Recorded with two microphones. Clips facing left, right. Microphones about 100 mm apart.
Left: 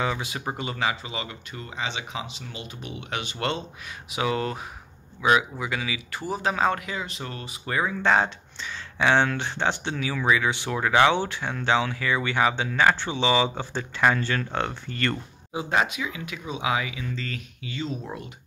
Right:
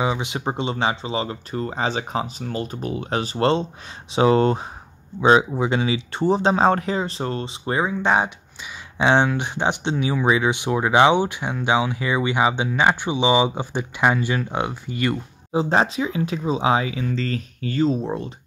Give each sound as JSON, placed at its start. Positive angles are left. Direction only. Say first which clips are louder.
{"t": 0.0, "sound": "speech", "louder": "right 5 dB", "side_deg": -20}
{"t": 15.5, "sound": "speech", "louder": "right 6 dB", "side_deg": -30}
{"t": 18.0, "sound": "speech", "louder": "right 9 dB", "side_deg": -30}